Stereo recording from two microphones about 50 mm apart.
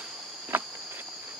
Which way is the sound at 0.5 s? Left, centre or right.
Right.